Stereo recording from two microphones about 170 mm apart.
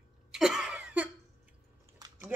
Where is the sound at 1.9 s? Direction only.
20° right (ahead or behind).